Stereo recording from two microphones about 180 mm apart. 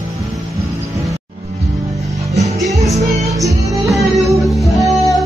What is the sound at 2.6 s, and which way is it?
Music, 20° right (ahead or behind).